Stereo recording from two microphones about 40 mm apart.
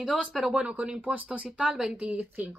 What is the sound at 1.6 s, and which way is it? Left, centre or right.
Speech, centre.